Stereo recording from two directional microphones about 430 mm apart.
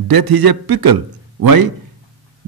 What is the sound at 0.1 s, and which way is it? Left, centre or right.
A man's voice, right.